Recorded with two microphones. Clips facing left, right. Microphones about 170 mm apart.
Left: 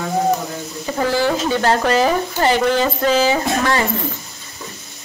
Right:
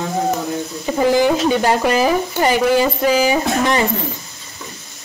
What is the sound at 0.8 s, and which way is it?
Speech, 15° right (ahead or behind).